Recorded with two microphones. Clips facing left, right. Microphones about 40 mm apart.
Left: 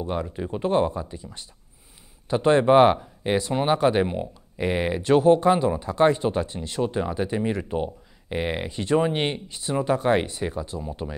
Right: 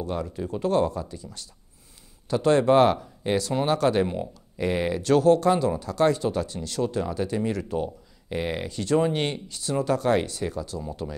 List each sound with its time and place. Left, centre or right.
0.0 s speech: left